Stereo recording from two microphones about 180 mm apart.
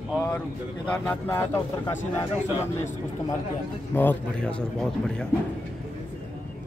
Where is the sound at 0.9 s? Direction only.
10° left (ahead or behind).